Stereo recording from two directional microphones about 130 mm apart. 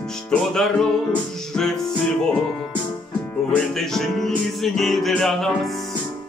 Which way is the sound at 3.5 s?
5° left (ahead or behind).